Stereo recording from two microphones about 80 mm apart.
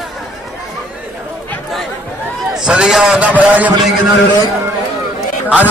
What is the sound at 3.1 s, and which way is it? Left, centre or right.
Speech, centre.